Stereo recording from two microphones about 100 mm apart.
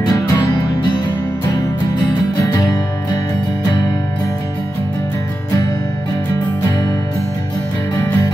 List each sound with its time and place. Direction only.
0.0 s music: 35° left (ahead or behind)
0.4 s music: 50° left (ahead or behind)